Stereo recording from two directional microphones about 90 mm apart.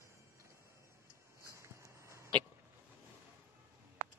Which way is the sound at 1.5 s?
35° right (ahead or behind).